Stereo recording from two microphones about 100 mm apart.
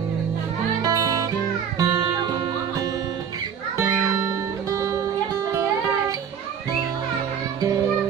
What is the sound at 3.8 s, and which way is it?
Music, 35° right (ahead or behind).